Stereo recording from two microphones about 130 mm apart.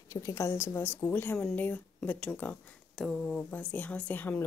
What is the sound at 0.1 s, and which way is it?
A woman's voice, 25° left (ahead or behind).